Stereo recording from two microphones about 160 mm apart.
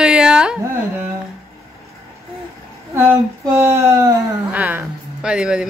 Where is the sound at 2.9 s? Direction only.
15° right (ahead or behind).